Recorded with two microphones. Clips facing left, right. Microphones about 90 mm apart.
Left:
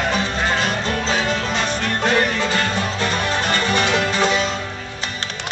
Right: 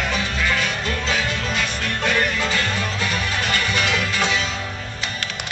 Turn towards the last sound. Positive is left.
turn(degrees=40)  # may be behind; listen again after turning